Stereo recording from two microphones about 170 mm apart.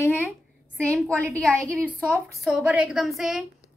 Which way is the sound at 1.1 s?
15° right (ahead or behind).